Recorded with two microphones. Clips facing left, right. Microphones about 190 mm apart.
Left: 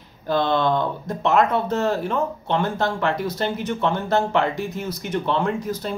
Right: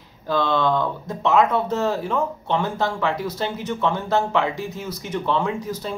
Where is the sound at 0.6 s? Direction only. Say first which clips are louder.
Even; 20° left (ahead or behind).